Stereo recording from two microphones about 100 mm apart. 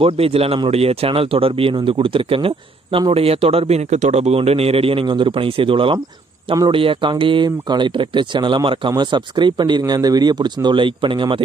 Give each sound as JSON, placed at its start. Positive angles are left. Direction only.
{"t": 0.0, "sound": "speech", "side_deg": -75}